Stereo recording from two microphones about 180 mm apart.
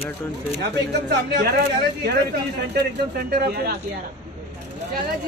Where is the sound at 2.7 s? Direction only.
60° right (ahead or behind).